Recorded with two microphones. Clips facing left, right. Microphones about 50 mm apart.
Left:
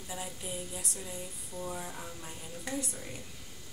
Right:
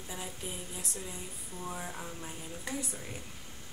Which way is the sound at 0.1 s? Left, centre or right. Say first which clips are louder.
Left 2 dB; right.